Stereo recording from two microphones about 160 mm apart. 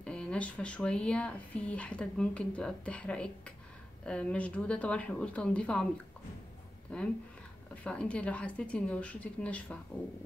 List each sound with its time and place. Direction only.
0.0 s speech: 5° left (ahead or behind)
6.9 s speech: 10° left (ahead or behind)